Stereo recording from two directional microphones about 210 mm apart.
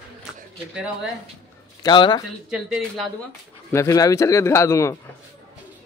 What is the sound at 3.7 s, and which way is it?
A man's voice, 15° left (ahead or behind).